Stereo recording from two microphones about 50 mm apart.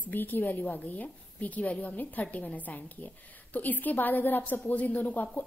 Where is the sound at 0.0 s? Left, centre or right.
Left.